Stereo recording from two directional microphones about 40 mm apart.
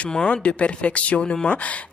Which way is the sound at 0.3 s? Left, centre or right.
Left.